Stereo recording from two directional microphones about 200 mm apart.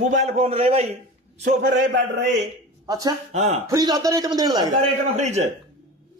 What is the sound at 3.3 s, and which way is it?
Speech, 35° right (ahead or behind).